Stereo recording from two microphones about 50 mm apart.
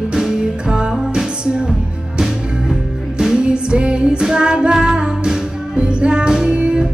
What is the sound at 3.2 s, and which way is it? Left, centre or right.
Music, centre.